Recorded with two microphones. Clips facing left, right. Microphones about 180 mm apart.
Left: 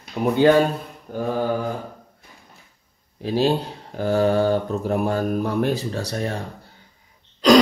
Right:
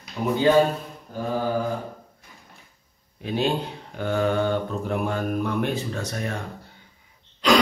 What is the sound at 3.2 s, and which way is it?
Speech, 35° left (ahead or behind).